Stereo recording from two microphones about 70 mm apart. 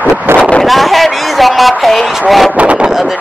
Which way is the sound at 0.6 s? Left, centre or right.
Centre.